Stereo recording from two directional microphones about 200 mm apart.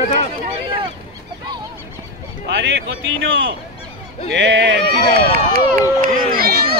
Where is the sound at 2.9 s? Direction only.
75° right (ahead or behind).